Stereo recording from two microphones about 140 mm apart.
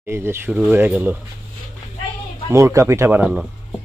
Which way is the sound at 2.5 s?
20° right (ahead or behind).